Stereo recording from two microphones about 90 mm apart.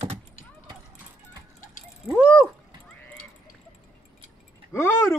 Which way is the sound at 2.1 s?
20° left (ahead or behind).